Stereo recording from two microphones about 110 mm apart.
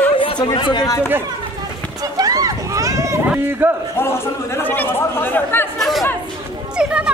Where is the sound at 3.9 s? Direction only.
25° left (ahead or behind).